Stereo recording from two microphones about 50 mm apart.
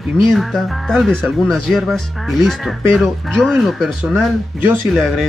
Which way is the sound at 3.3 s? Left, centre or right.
Centre.